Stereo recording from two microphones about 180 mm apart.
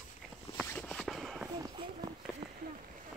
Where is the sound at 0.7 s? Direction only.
5° left (ahead or behind).